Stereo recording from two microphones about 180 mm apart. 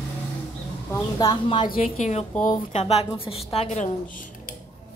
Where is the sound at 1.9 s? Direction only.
40° left (ahead or behind).